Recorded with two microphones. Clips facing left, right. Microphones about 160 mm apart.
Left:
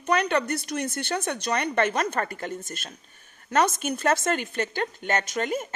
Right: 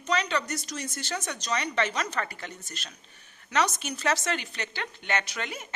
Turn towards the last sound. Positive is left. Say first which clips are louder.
# left 9 dB
turn(degrees=45)  # may be behind; listen again after turning